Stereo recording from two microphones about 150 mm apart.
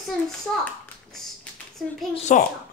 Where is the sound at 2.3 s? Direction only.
55° left (ahead or behind).